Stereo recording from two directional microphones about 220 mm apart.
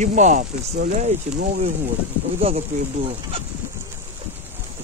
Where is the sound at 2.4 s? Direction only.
25° right (ahead or behind).